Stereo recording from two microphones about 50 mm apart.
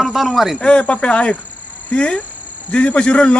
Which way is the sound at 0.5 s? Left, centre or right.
Centre.